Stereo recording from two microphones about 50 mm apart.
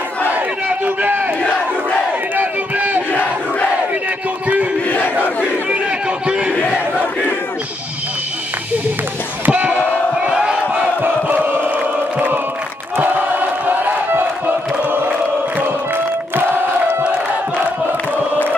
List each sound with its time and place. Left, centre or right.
0.3 s battle cry: right
2.3 s a sound: right
3.1 s crowd: left
4.8 s battle cry: left
5.7 s a sound: centre
9.5 s a sound: right
10.1 s battle cry: centre
11.0 s crowd: right
12.9 s choir: right
14.4 s chant: right